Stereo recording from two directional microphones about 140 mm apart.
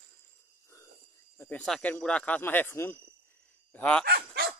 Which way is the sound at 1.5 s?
5° left (ahead or behind).